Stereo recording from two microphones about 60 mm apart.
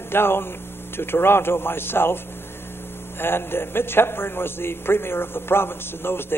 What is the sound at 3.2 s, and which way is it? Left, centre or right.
A man's voice, left.